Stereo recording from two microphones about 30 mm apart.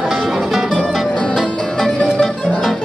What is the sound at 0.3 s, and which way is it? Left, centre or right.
Music, centre.